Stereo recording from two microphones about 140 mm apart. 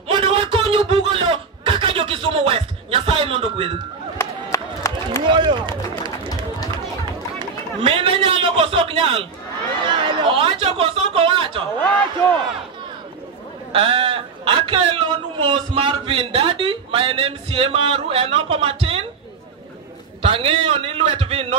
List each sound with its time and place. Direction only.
0.1 s a sound: 40° right (ahead or behind)
4.2 s run: 20° left (ahead or behind)
5.3 s run: 35° right (ahead or behind)
7.3 s a man's voice: 40° right (ahead or behind)
13.7 s a man's voice: 40° right (ahead or behind)
20.2 s a man's voice: 40° right (ahead or behind)